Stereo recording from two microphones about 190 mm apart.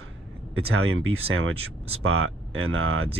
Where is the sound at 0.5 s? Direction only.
90° right.